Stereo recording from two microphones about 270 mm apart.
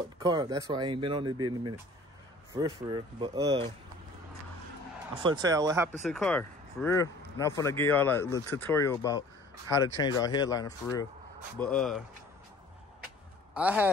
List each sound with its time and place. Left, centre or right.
0.2 s speech: centre
5.2 s speech: centre
6.0 s speech: centre
11.5 s speech: centre
13.6 s speech: centre